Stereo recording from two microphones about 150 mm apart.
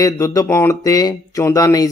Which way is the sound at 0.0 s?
25° left (ahead or behind).